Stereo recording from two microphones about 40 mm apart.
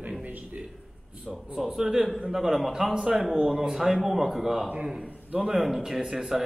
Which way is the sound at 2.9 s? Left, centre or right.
Right.